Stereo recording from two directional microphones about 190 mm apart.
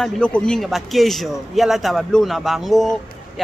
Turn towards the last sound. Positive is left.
turn(degrees=0)  # may be behind; listen again after turning